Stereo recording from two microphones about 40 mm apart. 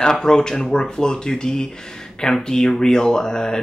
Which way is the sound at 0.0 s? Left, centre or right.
Centre.